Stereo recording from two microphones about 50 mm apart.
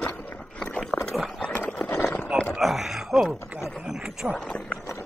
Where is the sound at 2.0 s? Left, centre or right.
Left.